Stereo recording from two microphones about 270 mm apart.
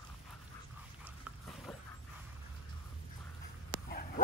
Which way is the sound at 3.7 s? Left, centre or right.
Left.